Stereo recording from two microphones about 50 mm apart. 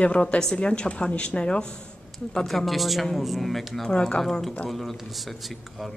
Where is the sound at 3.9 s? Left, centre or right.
Centre.